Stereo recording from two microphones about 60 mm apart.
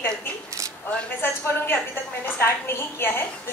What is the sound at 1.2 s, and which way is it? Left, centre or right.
A woman's voice, left.